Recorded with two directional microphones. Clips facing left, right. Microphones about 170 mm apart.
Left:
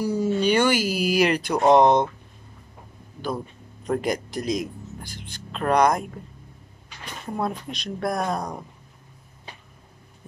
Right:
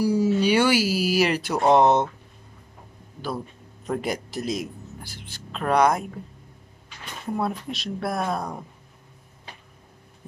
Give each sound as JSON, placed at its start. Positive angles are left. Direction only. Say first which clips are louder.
{"t": 0.0, "sound": "speech", "louder": "right 2 dB", "side_deg": -10}
{"t": 3.8, "sound": "speech", "louder": "left 3 dB", "side_deg": -5}
{"t": 7.3, "sound": "speech", "louder": "even", "side_deg": -5}